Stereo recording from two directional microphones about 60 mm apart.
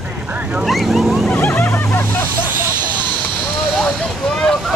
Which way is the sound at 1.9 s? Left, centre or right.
Left.